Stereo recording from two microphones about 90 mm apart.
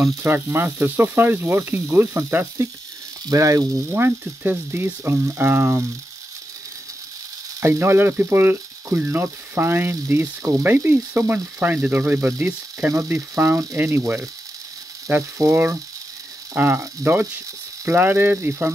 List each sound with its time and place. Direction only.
0.0 s speech: 25° right (ahead or behind)
3.9 s speech: 20° right (ahead or behind)
7.6 s speech: 30° right (ahead or behind)